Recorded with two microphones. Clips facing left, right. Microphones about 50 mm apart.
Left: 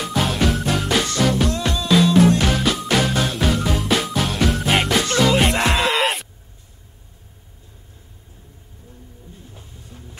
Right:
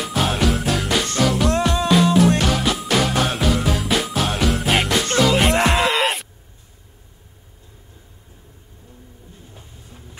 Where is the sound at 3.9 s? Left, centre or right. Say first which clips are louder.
Even; centre.